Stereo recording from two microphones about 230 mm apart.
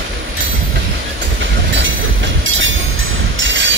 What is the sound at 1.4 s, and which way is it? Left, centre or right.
Train, right.